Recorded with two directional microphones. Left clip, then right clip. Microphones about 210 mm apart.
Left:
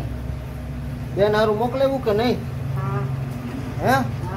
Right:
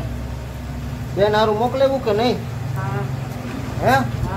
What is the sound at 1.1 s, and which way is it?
Speech, 5° left (ahead or behind).